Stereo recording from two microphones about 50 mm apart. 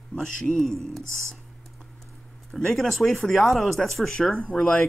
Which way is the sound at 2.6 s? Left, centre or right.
Centre.